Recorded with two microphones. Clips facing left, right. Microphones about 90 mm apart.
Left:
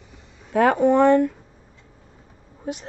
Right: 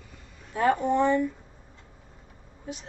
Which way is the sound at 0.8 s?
70° left (ahead or behind).